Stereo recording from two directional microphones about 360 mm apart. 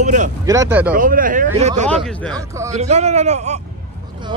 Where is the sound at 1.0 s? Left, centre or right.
Right.